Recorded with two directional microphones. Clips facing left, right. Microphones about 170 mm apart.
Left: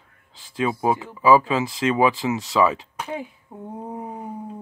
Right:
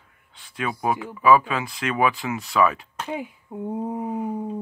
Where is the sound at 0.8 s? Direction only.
25° left (ahead or behind).